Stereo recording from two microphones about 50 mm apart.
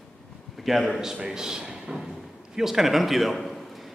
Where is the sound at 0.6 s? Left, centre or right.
Centre.